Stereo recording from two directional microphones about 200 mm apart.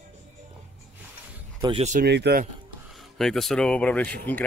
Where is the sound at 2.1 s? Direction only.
55° right (ahead or behind).